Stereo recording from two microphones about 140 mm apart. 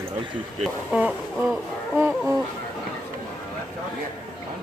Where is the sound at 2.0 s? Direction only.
10° right (ahead or behind).